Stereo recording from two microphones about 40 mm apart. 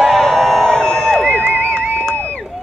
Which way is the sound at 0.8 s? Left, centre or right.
Centre.